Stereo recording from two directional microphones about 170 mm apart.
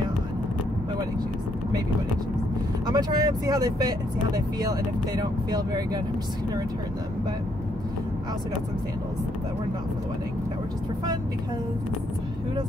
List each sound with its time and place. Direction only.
2.9 s speech: 25° right (ahead or behind)